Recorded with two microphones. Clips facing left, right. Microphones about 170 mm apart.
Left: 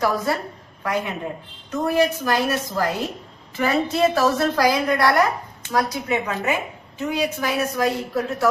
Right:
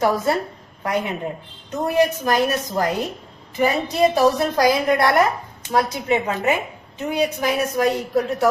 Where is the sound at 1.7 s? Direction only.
20° right (ahead or behind).